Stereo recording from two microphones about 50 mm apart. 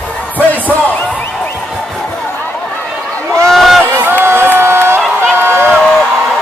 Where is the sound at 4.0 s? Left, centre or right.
Right.